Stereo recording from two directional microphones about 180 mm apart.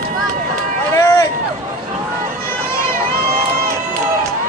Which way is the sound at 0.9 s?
15° left (ahead or behind).